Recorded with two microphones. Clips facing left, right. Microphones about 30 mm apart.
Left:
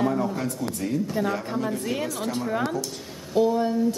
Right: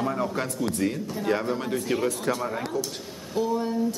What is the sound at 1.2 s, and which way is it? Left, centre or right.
Speech, left.